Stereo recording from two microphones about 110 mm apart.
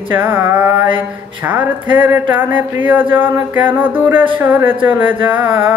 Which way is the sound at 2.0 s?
20° right (ahead or behind).